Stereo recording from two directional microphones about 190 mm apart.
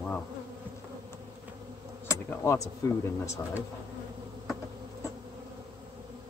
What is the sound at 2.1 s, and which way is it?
Speech, 15° left (ahead or behind).